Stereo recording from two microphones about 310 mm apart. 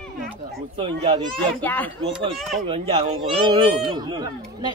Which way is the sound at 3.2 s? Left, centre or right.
Centre.